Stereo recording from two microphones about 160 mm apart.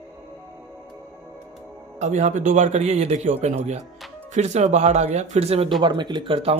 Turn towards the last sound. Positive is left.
turn(degrees=-35)  # may be behind; listen again after turning